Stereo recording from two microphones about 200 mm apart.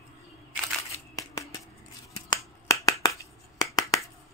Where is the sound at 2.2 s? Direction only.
15° left (ahead or behind).